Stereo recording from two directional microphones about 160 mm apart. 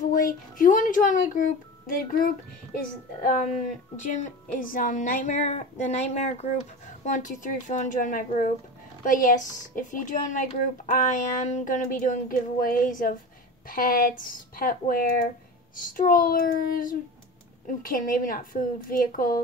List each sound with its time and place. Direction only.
0.0 s a woman's voice: 60° left (ahead or behind)